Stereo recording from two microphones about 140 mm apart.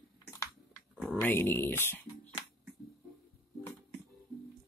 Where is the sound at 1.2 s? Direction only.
15° left (ahead or behind).